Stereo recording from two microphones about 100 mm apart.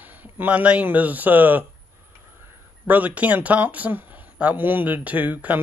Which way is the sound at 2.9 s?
15° right (ahead or behind).